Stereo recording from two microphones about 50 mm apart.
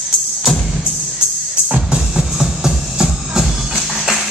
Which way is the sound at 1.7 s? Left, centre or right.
Right.